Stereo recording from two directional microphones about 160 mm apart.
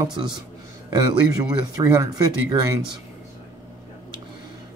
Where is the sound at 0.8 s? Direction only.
20° right (ahead or behind).